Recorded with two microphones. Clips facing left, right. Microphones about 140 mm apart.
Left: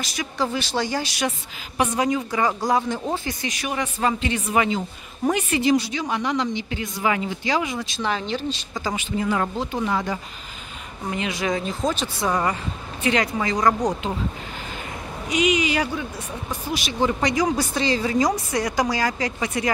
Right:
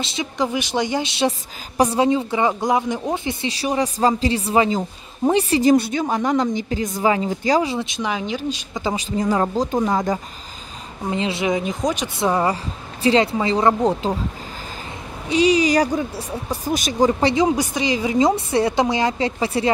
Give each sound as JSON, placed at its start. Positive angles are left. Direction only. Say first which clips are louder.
{"t": 0.0, "sound": "a woman's voice", "louder": "right 3 dB", "side_deg": -25}
{"t": 7.7, "sound": "a woman's voice", "louder": "right 4 dB", "side_deg": -20}
{"t": 8.0, "sound": "speech", "louder": "left 2 dB", "side_deg": -10}
{"t": 8.9, "sound": "speech", "louder": "right 3 dB", "side_deg": -35}
{"t": 11.1, "sound": "a woman's voice", "louder": "right 4 dB", "side_deg": -25}
{"t": 12.3, "sound": "a woman's voice", "louder": "right 4 dB", "side_deg": -25}
{"t": 15.2, "sound": "speech", "louder": "right 5 dB", "side_deg": -35}
{"t": 17.2, "sound": "a woman's voice", "louder": "right 4 dB", "side_deg": -25}